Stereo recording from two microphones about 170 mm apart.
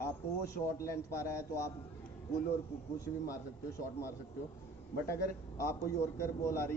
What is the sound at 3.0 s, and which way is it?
A man's voice, 20° left (ahead or behind).